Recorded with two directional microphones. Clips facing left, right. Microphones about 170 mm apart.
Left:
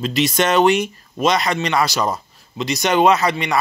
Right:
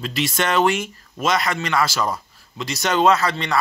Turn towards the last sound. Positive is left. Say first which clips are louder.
# left 2 dB
turn(degrees=15)  # may be behind; listen again after turning